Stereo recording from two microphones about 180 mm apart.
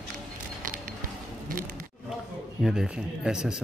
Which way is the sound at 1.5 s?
50° right (ahead or behind).